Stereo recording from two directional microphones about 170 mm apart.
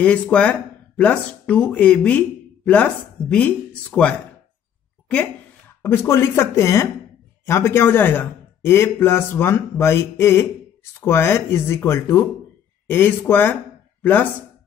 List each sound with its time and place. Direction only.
0.0 s speech: 5° left (ahead or behind)
5.8 s speech: 15° left (ahead or behind)